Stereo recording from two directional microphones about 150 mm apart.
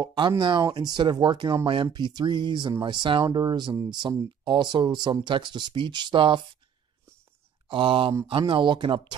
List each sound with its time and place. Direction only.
0.0 s speech: 30° right (ahead or behind)
7.6 s speech: 35° right (ahead or behind)